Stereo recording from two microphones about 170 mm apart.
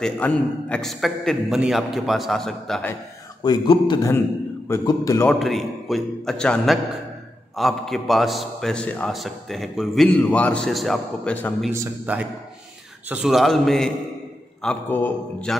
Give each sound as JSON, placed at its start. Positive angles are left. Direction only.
{"t": 0.2, "sound": "a man's voice", "side_deg": 10}
{"t": 3.4, "sound": "a man's voice", "side_deg": 30}
{"t": 5.3, "sound": "a man's voice", "side_deg": 0}
{"t": 11.7, "sound": "a man's voice", "side_deg": -15}
{"t": 13.1, "sound": "a man's voice", "side_deg": -5}